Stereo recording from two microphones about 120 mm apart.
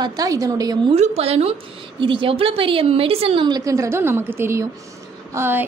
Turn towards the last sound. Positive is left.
turn(degrees=-20)  # may be behind; listen again after turning